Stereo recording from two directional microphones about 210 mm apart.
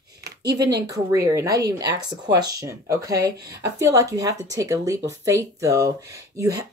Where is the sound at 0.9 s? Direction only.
15° right (ahead or behind).